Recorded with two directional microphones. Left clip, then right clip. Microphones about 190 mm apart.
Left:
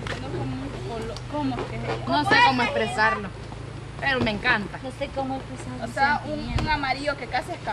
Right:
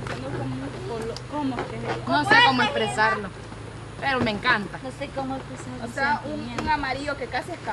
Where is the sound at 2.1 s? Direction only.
15° right (ahead or behind).